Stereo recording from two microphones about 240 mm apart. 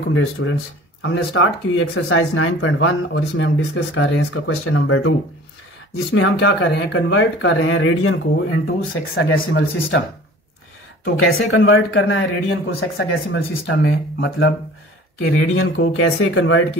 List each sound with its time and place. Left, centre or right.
0.1 s speech: left
6.1 s speech: left
11.1 s speech: left
15.4 s speech: left